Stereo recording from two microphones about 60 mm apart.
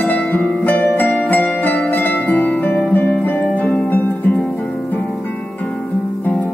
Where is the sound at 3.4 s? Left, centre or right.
Left.